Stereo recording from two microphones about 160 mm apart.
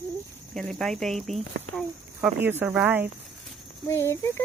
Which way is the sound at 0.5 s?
5° left (ahead or behind).